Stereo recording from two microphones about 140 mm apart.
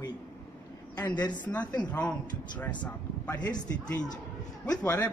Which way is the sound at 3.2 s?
25° left (ahead or behind).